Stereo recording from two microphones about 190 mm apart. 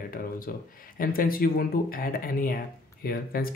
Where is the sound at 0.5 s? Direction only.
50° left (ahead or behind).